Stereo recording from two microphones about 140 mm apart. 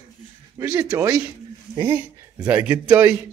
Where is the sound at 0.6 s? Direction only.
15° right (ahead or behind).